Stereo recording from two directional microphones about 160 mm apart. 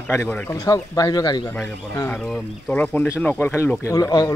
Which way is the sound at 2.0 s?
10° left (ahead or behind).